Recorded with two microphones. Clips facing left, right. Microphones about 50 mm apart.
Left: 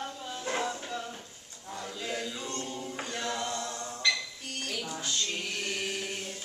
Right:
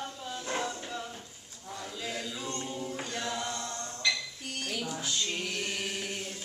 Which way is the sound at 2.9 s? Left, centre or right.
Centre.